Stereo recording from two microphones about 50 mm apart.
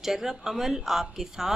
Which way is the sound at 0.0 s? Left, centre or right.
Centre.